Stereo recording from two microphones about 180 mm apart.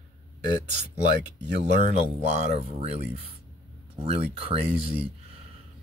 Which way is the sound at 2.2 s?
35° right (ahead or behind).